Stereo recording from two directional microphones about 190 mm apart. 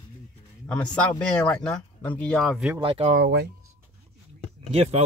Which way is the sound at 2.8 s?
30° right (ahead or behind).